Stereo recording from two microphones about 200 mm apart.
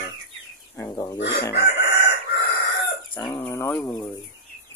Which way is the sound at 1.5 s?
55° left (ahead or behind).